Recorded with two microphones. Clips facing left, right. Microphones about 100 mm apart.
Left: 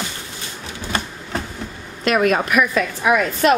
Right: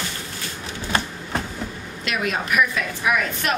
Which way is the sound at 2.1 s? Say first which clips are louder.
Left 9 dB; 50° left (ahead or behind).